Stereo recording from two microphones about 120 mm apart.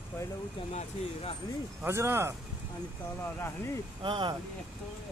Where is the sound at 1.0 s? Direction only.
70° left (ahead or behind).